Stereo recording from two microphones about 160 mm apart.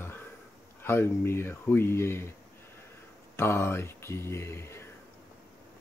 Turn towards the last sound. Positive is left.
turn(degrees=15)  # may be behind; listen again after turning